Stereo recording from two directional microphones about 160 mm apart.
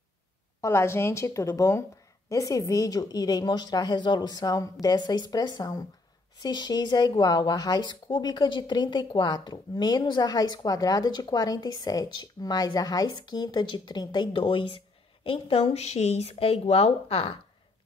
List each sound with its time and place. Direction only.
0.6 s speech: 15° left (ahead or behind); by 17.4 s 35° left (ahead or behind)